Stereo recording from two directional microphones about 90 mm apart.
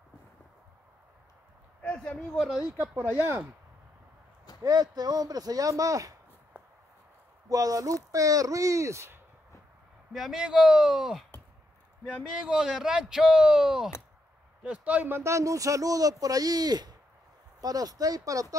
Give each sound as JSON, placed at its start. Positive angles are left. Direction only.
{"t": 1.8, "sound": "a sound", "side_deg": 15}
{"t": 2.1, "sound": "speech", "side_deg": 5}
{"t": 2.6, "sound": "speech", "side_deg": -20}
{"t": 4.6, "sound": "speech", "side_deg": -45}
{"t": 7.4, "sound": "speech", "side_deg": -40}
{"t": 10.1, "sound": "speech", "side_deg": -5}
{"t": 12.4, "sound": "speech", "side_deg": -5}